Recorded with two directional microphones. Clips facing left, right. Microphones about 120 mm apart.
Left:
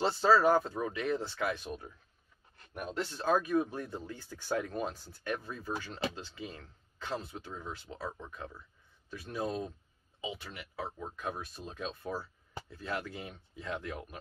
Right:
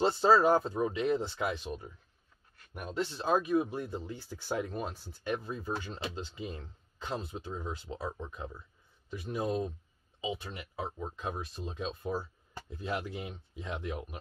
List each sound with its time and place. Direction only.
0.2 s speech: 20° right (ahead or behind)
5.2 s speech: 20° right (ahead or behind)
10.2 s speech: 25° right (ahead or behind)